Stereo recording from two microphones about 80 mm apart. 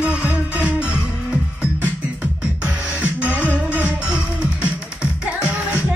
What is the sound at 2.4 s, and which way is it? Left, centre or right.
Music, centre.